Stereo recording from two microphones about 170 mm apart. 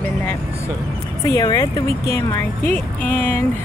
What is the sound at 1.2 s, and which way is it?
Speech, 20° left (ahead or behind).